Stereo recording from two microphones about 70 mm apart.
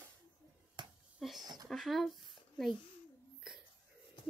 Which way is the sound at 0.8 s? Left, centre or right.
Right.